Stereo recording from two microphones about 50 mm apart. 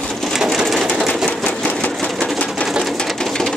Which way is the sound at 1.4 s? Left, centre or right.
Left.